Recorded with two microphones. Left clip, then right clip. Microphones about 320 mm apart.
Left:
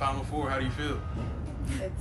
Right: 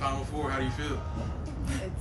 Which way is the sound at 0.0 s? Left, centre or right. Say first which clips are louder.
Left 1 dB; centre.